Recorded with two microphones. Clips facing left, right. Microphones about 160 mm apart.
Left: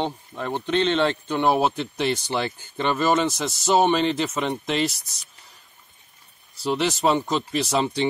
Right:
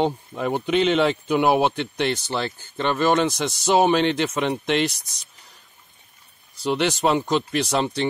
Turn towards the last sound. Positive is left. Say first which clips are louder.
# right 1 dB
turn(degrees=0)  # may be behind; listen again after turning